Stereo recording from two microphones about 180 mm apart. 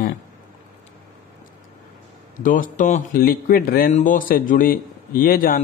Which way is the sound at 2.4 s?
50° left (ahead or behind).